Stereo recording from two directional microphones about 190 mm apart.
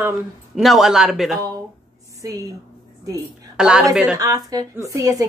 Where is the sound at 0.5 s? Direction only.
Centre (ahead or behind).